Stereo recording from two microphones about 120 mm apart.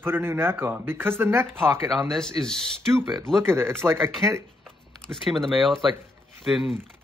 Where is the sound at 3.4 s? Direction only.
20° right (ahead or behind).